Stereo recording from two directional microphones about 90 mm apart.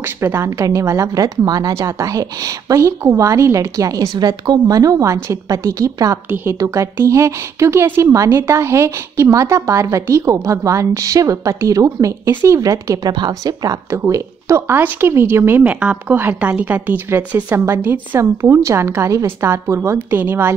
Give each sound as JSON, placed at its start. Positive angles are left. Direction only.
{"t": 0.0, "sound": "speech", "side_deg": -30}
{"t": 13.8, "sound": "speech", "side_deg": -35}
{"t": 15.6, "sound": "a woman's voice", "side_deg": -15}
{"t": 18.2, "sound": "speech", "side_deg": -30}